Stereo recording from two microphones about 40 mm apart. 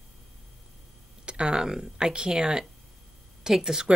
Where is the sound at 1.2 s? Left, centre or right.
Right; by 3.9 s centre.